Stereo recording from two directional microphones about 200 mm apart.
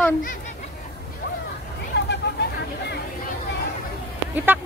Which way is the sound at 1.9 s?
55° left (ahead or behind).